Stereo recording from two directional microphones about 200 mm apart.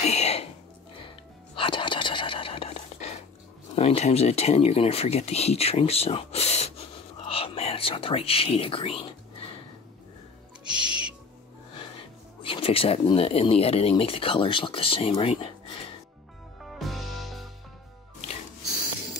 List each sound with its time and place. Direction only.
0.0 s music: 35° left (ahead or behind)
3.7 s speech: 30° left (ahead or behind)
10.6 s owl: 5° right (ahead or behind)
12.4 s speech: 25° left (ahead or behind)
16.6 s music: centre (ahead or behind)